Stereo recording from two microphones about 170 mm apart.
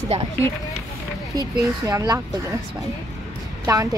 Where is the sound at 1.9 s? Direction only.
20° right (ahead or behind).